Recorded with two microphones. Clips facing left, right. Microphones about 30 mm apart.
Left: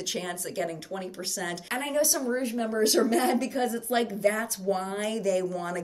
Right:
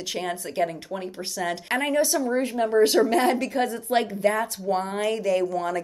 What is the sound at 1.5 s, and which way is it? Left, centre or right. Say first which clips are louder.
A woman's voice: right 6 dB; right.